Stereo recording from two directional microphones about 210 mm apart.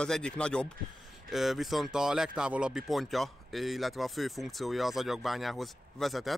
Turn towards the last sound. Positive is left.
turn(degrees=0)  # may be behind; listen again after turning